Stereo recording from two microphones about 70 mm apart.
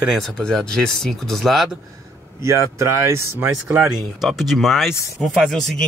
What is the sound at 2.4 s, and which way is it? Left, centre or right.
Speech, right.